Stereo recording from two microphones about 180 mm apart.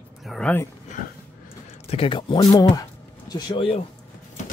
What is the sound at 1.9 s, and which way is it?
Speech, 30° left (ahead or behind).